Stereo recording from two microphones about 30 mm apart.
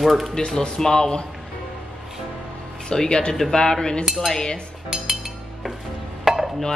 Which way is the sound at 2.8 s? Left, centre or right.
Left.